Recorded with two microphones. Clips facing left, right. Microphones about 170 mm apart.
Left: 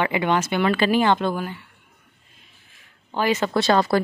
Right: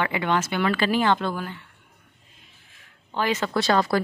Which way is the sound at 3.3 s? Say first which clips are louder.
Left 2 dB; 25° left (ahead or behind).